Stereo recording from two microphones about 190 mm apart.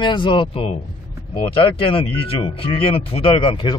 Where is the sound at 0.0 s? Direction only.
25° left (ahead or behind).